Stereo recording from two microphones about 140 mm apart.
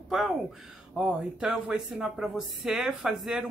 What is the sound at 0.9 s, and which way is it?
Speech, 5° right (ahead or behind).